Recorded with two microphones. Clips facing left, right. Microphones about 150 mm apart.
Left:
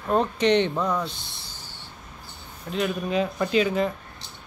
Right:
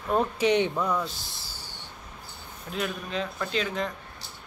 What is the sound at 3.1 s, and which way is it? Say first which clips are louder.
Speech: left 9 dB; 10° left (ahead or behind).